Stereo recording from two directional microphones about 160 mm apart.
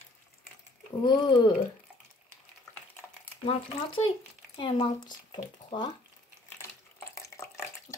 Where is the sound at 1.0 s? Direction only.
30° left (ahead or behind).